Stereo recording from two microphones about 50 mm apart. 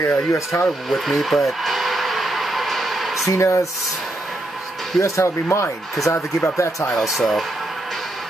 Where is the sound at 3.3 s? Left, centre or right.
Left.